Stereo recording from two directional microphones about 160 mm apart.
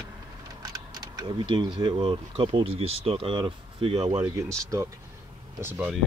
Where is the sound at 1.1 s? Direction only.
30° right (ahead or behind).